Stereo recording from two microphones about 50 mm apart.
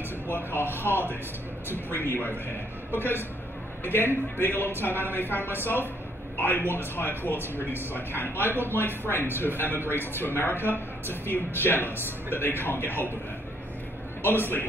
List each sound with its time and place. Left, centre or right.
0.5 s a man's voice: left
14.2 s speech: left